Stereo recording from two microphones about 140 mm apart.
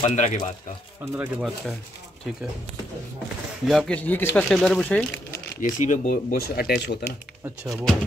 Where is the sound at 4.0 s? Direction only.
10° left (ahead or behind).